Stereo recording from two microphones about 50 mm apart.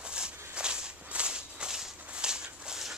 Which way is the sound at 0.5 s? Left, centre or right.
Centre.